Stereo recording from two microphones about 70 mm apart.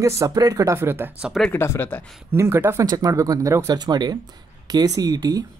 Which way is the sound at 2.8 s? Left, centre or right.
Right.